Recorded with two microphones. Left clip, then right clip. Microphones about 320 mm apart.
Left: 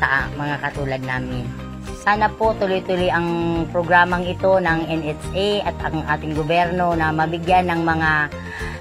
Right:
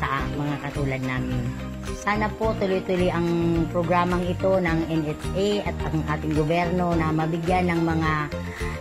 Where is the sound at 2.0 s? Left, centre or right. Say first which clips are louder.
Left 7 dB; left.